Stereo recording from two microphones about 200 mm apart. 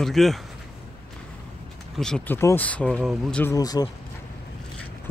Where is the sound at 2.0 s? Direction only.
5° left (ahead or behind).